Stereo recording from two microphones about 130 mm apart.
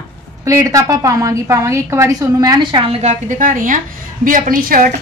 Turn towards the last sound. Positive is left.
turn(degrees=-90)